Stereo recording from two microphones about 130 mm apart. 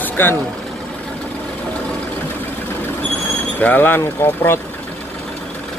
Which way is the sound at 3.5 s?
15° left (ahead or behind).